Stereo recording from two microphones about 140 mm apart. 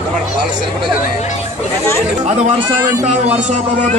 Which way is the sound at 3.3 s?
55° right (ahead or behind).